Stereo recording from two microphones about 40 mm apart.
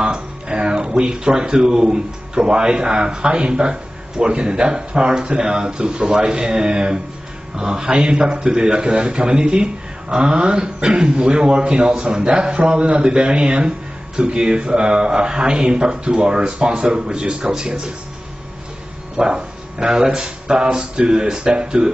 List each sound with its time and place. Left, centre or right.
0.0 s speech: right
19.1 s speech: right